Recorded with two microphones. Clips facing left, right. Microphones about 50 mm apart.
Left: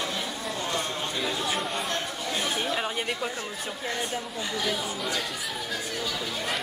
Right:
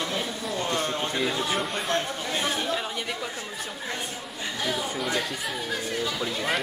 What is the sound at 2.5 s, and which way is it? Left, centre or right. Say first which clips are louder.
Speech: even; centre.